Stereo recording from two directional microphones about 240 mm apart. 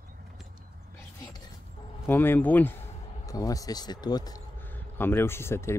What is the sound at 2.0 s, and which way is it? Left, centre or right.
Speech, centre.